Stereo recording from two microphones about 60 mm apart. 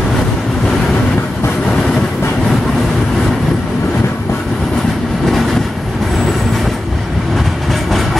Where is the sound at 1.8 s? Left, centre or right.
Centre.